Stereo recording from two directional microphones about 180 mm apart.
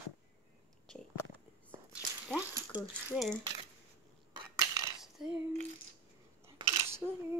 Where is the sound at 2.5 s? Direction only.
10° right (ahead or behind).